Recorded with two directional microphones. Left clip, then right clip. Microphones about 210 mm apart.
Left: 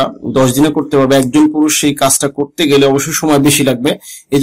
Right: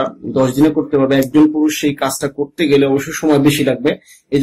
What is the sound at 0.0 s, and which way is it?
Speech, 40° left (ahead or behind).